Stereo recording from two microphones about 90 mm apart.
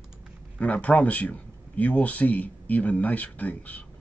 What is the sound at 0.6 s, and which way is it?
Speech, 15° left (ahead or behind).